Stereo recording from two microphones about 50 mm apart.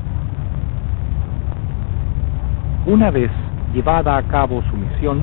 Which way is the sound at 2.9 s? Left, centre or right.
Right.